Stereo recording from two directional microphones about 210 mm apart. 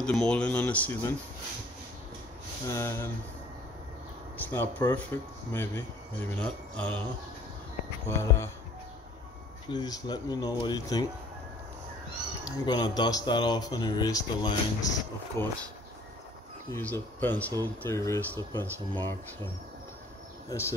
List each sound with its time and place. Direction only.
0.0 s speech: 5° left (ahead or behind)
2.6 s speech: 15° left (ahead or behind)
4.4 s speech: 10° left (ahead or behind)
8.1 s speech: 10° left (ahead or behind)
9.7 s speech: 20° left (ahead or behind)
12.4 s speech: 20° left (ahead or behind)
16.7 s speech: 10° left (ahead or behind)